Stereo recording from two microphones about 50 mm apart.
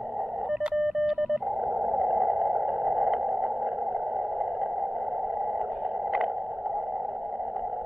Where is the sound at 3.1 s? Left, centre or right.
Centre.